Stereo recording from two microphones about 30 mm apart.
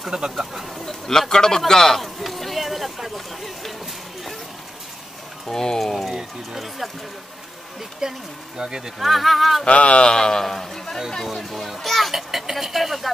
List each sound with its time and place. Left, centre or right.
0.1 s speech: right
0.7 s a man's voice: centre
2.0 s a sound: centre
5.5 s a man's voice: centre
5.8 s speech: centre
8.0 s speech: right
9.0 s speech: centre
9.7 s speech: left
10.0 s a man's voice: left
10.4 s a man's voice: centre
11.5 s a child's voice: centre
12.2 s speech: centre